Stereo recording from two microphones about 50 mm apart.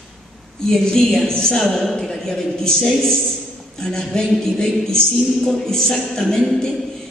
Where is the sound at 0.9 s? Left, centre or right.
Centre.